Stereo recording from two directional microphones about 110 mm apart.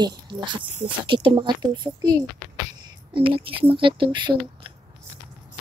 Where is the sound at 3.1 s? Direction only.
50° right (ahead or behind).